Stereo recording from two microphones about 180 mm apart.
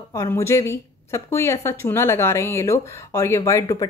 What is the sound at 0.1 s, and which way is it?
Speech, 15° left (ahead or behind).